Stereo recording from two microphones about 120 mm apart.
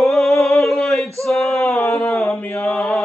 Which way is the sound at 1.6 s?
25° left (ahead or behind).